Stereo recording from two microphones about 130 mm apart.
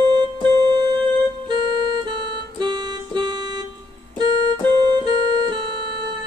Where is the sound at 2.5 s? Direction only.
35° right (ahead or behind).